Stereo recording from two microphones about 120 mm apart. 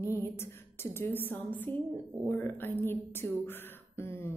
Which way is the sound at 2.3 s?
15° left (ahead or behind).